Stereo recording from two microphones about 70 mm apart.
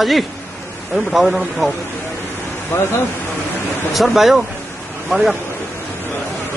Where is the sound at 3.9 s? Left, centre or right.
Centre.